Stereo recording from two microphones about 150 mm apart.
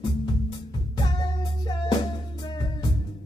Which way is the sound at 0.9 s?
30° left (ahead or behind).